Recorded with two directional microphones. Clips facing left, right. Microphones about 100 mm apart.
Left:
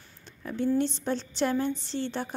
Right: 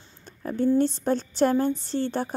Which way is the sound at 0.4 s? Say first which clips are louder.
Right 5 dB; 40° right (ahead or behind).